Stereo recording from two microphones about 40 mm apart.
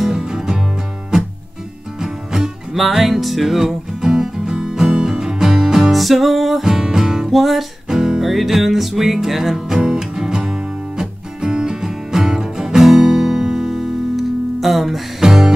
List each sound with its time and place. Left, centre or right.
0.1 s music: centre
2.0 s music: centre
5.9 s music: centre
6.6 s music: centre
7.2 s music: centre
7.9 s music: centre
9.8 s music: centre
15.2 s music: centre